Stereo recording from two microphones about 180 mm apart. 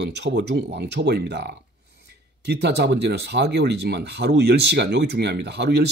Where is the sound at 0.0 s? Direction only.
70° right (ahead or behind).